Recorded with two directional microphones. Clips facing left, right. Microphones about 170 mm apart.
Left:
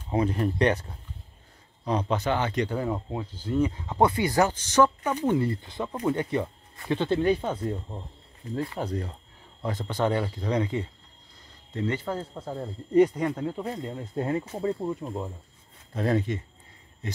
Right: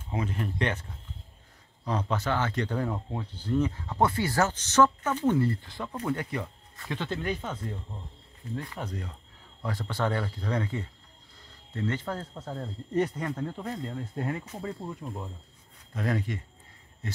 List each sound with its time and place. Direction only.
0.1 s speech: 35° left (ahead or behind)
1.9 s speech: 20° left (ahead or behind); by 9.1 s 35° left (ahead or behind)
9.6 s speech: 20° left (ahead or behind)